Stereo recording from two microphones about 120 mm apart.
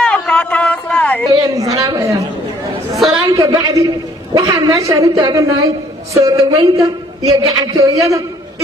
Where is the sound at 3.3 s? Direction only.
40° right (ahead or behind).